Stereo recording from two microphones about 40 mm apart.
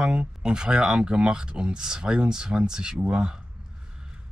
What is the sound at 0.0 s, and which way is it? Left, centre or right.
Speech, right.